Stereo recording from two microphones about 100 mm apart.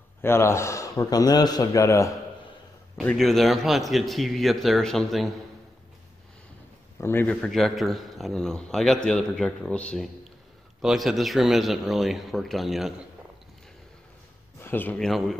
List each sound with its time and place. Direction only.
0.2 s a man's voice: 25° left (ahead or behind)
3.2 s a man's voice: centre (ahead or behind)
7.0 s a man's voice: 20° left (ahead or behind)
7.4 s a man's voice: centre (ahead or behind)
10.8 s a man's voice: 5° right (ahead or behind)
14.6 s speech: 20° left (ahead or behind)
15.0 s a man's voice: centre (ahead or behind)